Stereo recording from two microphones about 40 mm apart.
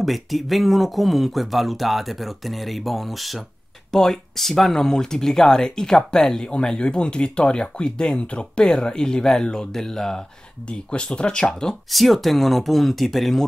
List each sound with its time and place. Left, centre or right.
0.0 s speech: centre
10.7 s speech: left
11.9 s speech: centre